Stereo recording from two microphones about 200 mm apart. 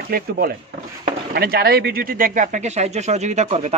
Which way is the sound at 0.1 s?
45° right (ahead or behind).